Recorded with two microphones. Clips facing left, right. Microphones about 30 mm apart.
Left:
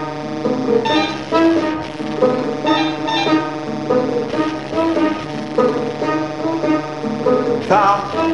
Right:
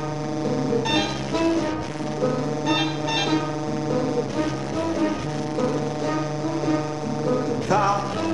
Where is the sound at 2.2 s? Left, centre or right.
Left.